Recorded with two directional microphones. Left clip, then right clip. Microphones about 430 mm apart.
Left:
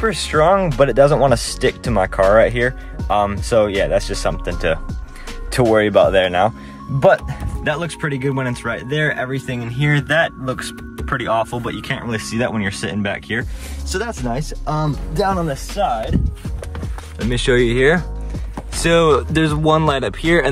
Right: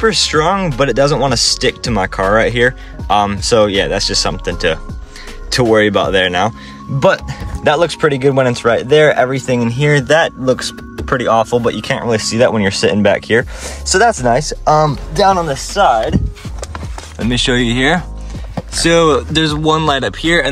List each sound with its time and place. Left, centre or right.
0.0 s speech: centre
17.2 s speech: centre